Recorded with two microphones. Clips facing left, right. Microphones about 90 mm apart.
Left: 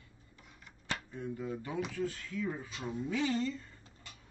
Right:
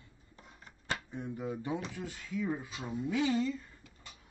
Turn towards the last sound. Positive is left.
turn(degrees=-5)  # may be behind; listen again after turning